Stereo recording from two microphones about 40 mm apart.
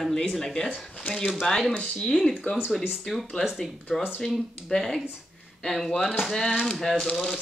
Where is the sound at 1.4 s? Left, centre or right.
Centre.